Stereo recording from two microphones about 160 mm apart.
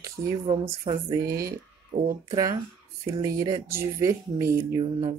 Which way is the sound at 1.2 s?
65° right (ahead or behind).